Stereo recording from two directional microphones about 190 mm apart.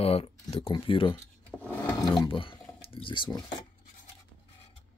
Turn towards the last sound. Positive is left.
turn(degrees=25)  # may be behind; listen again after turning